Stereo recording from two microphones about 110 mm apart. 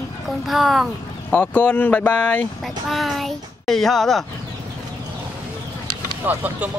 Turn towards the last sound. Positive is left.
turn(degrees=-15)  # may be behind; listen again after turning